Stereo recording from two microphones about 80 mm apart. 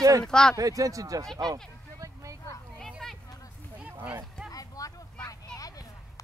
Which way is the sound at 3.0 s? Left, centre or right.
Centre.